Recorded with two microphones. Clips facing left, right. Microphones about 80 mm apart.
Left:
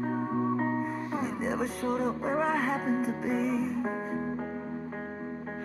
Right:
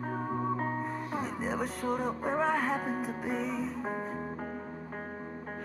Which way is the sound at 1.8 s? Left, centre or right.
Right.